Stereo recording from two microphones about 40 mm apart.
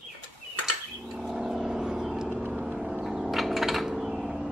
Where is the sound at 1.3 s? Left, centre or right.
Centre.